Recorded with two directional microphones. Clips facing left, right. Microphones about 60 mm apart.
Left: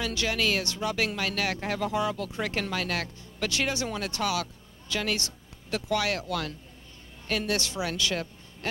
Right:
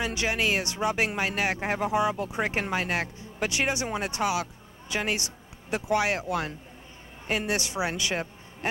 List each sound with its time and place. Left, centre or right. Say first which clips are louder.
0.0 s a woman's voice: right 1 dB; right